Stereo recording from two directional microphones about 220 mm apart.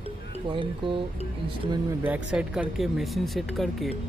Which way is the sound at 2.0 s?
5° right (ahead or behind).